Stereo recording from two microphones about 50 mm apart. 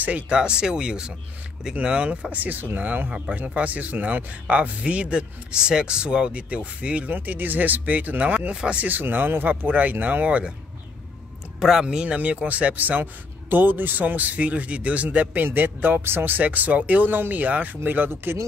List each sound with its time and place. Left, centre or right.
0.3 s speech: centre
2.3 s speech: right
7.2 s a man's voice: right; by 8.8 s centre
8.8 s a man's voice: right
11.8 s speech: centre
12.2 s a man's voice: right
17.8 s speech: right